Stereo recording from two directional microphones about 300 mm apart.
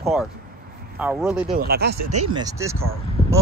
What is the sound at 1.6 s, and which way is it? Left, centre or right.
Speech, right.